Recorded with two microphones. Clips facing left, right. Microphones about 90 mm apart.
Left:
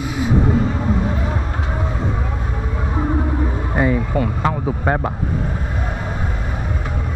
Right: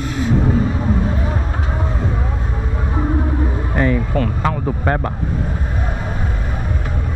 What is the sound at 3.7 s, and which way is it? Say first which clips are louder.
Speech: even; 10° left (ahead or behind).